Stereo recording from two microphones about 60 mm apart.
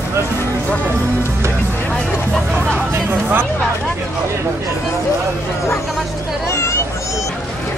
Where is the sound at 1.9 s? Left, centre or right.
Centre.